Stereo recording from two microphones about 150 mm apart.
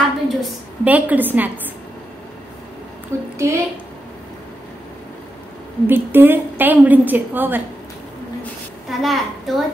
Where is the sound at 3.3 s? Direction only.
20° right (ahead or behind).